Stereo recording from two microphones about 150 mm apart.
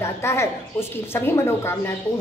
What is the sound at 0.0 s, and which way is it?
A woman's voice, 20° left (ahead or behind).